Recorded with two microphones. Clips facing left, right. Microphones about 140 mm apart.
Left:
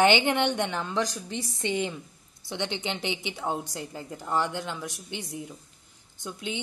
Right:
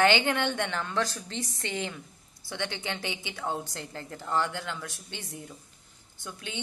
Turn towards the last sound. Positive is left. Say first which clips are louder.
# left 6 dB
turn(degrees=20)  # may be behind; listen again after turning